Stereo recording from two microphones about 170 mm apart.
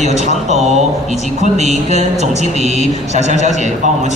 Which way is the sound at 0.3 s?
40° right (ahead or behind).